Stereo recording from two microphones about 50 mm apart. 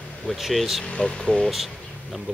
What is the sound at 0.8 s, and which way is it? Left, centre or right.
Speech, left.